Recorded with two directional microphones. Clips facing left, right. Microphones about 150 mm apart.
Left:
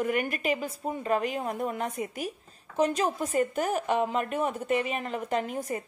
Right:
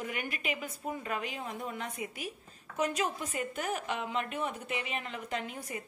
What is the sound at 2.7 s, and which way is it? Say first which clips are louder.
A woman's voice: left 6 dB; 35° left (ahead or behind).